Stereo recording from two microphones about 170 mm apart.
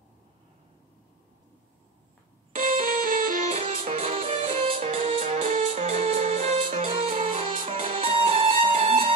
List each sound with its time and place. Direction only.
2.5 s music: 50° right (ahead or behind)
3.5 s music: 40° right (ahead or behind)
6.9 s music: 35° right (ahead or behind)